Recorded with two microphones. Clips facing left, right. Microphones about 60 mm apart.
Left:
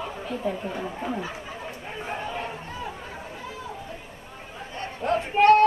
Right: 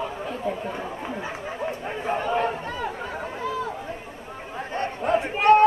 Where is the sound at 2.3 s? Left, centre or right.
Right.